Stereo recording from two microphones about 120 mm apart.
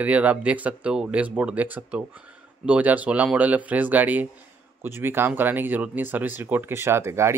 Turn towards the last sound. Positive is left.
turn(degrees=-25)  # may be behind; listen again after turning